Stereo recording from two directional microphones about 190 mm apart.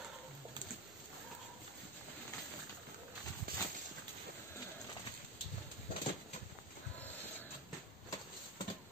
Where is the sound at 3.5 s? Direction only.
50° right (ahead or behind).